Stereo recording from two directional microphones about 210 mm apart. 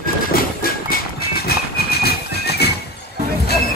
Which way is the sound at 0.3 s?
45° left (ahead or behind).